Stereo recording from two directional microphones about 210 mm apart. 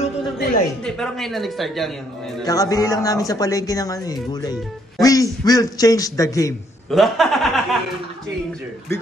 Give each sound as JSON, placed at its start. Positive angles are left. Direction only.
{"t": 0.8, "sound": "speech", "side_deg": 5}
{"t": 2.4, "sound": "speech", "side_deg": 15}
{"t": 6.9, "sound": "speech", "side_deg": 0}